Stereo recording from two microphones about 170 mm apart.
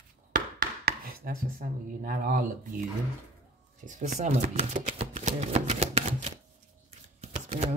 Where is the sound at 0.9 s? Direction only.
60° right (ahead or behind).